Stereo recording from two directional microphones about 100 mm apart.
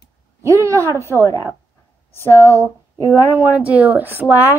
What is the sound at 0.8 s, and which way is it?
Speech, 25° left (ahead or behind).